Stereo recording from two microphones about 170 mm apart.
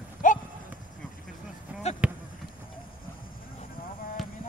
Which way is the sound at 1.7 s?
5° right (ahead or behind).